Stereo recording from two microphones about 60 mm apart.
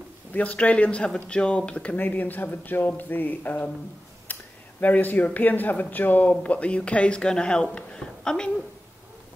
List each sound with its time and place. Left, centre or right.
0.3 s speech: left